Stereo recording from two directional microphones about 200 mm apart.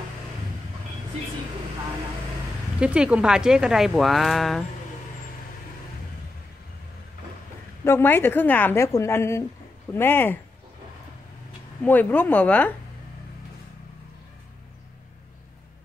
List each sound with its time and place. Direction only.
2.8 s speech: 5° right (ahead or behind)
7.8 s a woman's voice: 10° left (ahead or behind)
11.8 s a woman's voice: 10° left (ahead or behind)